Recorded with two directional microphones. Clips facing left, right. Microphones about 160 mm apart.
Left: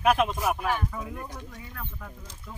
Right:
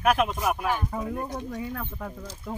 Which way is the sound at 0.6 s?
10° right (ahead or behind).